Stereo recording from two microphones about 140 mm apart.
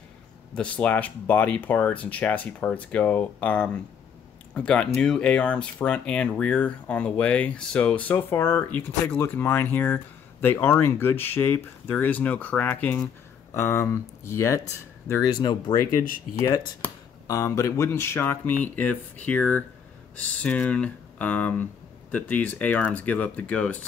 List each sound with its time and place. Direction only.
0.6 s speech: 10° left (ahead or behind)